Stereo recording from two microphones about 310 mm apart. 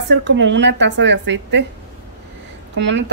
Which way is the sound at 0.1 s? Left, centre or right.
Right.